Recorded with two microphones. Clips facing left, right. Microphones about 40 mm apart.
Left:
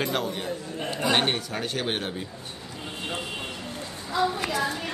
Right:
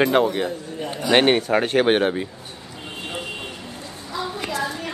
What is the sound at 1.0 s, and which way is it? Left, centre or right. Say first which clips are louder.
Speech: right 8 dB; right.